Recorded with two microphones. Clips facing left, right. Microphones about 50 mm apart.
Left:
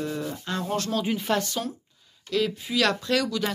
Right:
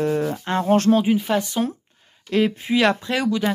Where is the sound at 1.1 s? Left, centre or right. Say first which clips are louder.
Right 5 dB; centre.